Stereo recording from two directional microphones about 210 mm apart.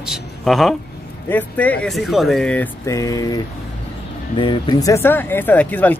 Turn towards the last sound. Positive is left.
turn(degrees=10)  # may be behind; listen again after turning